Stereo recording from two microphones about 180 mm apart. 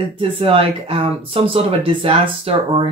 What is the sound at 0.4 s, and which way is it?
Speech, 30° right (ahead or behind).